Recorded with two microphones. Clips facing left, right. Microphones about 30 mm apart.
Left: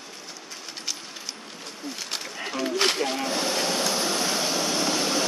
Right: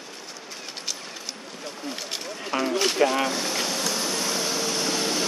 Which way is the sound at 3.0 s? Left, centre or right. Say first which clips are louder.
Right 5 dB; right.